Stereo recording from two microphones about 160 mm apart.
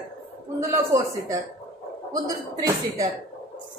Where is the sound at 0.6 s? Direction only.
20° right (ahead or behind).